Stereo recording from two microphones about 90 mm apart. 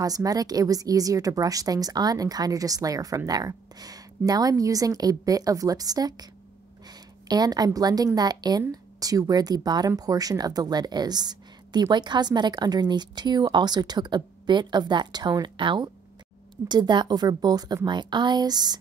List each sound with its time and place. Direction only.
0.0 s a woman's voice: 45° right (ahead or behind)